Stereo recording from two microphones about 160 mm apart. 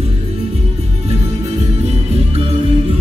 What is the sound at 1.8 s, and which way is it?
Music, 40° right (ahead or behind).